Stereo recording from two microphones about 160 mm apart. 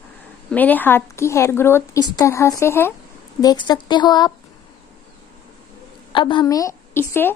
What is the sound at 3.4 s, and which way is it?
Speech, 25° left (ahead or behind).